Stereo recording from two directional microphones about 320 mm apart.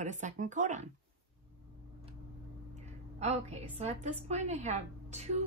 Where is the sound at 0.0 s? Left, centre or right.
Right.